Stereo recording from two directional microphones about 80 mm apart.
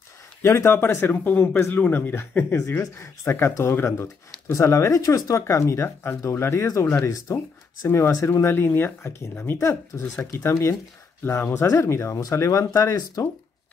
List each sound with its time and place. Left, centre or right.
0.4 s speech: left
9.6 s speech: left